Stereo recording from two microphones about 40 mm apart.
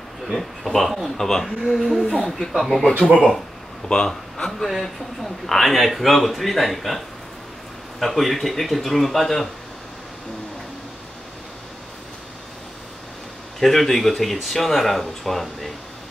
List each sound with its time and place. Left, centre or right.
0.3 s a man's voice: centre
1.7 s a man's voice: centre
3.9 s a man's voice: centre
4.5 s a man's voice: centre
8.0 s a man's voice: centre
13.6 s a man's voice: centre